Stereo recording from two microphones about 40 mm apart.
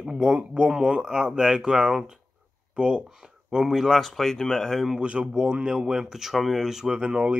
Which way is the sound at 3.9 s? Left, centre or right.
Centre.